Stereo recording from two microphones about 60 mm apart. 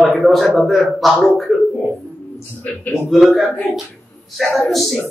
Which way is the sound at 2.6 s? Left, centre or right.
Left.